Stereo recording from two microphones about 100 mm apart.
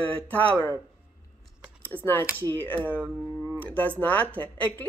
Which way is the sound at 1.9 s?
20° left (ahead or behind).